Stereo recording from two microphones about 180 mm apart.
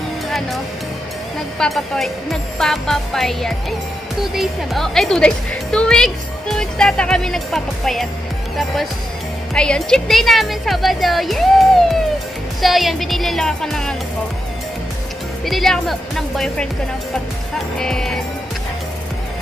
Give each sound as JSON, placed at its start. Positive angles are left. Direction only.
{"t": 1.6, "sound": "a woman's voice", "side_deg": 0}
{"t": 9.5, "sound": "a woman's voice", "side_deg": 5}
{"t": 15.4, "sound": "a woman's voice", "side_deg": 0}
{"t": 17.7, "sound": "a woman's voice", "side_deg": 5}